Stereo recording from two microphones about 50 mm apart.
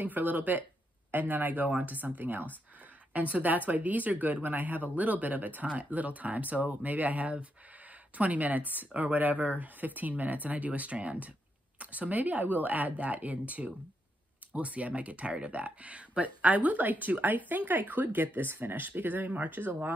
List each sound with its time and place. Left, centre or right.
0.0 s speech: right